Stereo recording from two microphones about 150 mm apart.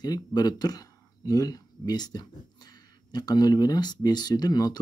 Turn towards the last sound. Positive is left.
turn(degrees=25)  # may be behind; listen again after turning